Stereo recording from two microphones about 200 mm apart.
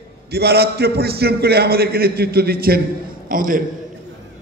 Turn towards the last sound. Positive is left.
turn(degrees=-45)  # may be behind; listen again after turning